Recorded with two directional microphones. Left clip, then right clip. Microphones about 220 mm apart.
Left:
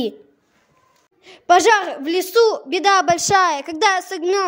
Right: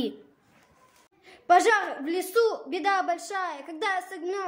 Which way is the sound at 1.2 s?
40° left (ahead or behind).